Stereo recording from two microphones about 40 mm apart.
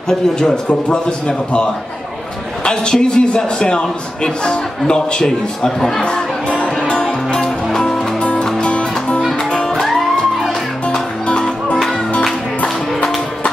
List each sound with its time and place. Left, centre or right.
0.5 s a man's voice: left; by 6.0 s centre
6.0 s music: left
8.6 s music: left
9.8 s music: centre
10.9 s music: left